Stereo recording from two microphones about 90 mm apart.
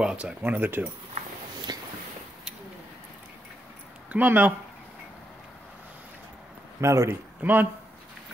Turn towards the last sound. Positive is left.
turn(degrees=-20)  # may be behind; listen again after turning